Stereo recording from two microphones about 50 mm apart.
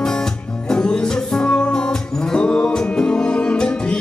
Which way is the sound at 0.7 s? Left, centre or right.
Centre.